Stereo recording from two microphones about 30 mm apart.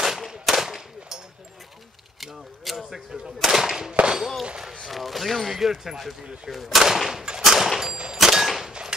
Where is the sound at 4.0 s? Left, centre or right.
Right.